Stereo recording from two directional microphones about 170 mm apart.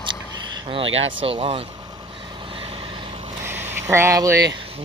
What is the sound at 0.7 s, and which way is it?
Speech, 35° right (ahead or behind).